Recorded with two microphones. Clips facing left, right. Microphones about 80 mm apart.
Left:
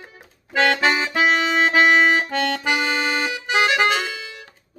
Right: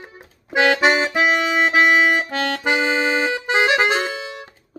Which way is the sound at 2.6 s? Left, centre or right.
Right.